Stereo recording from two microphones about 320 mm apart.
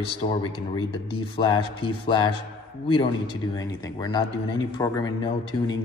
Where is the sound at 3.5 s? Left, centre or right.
Centre.